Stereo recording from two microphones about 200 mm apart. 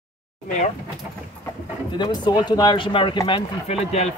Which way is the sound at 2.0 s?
20° left (ahead or behind).